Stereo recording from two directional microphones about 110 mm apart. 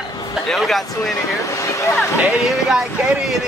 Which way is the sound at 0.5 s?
Centre (ahead or behind).